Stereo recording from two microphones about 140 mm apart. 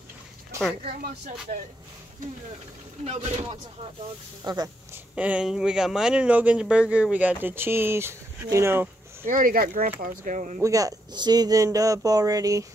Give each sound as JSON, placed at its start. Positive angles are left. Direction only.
{"t": 3.1, "sound": "speech", "side_deg": -50}
{"t": 4.4, "sound": "speech", "side_deg": -30}
{"t": 4.9, "sound": "speech", "side_deg": -10}
{"t": 9.2, "sound": "speech", "side_deg": -80}
{"t": 9.9, "sound": "speech", "side_deg": -80}
{"t": 10.6, "sound": "speech", "side_deg": -25}